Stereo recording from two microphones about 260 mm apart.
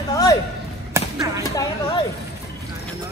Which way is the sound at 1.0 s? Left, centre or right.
Centre.